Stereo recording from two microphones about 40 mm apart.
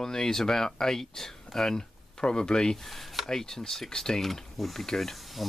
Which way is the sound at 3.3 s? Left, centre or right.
Centre.